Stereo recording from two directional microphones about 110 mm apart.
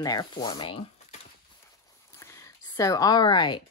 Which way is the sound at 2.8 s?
30° left (ahead or behind).